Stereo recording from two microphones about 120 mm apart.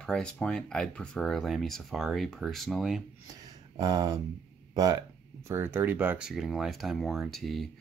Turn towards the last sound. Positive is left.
turn(degrees=0)  # may be behind; listen again after turning